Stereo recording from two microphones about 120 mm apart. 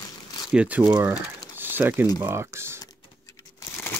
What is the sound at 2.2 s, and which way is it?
Speech, 20° right (ahead or behind).